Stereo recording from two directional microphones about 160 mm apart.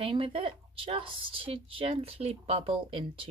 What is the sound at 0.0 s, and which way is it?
Speech, 35° right (ahead or behind).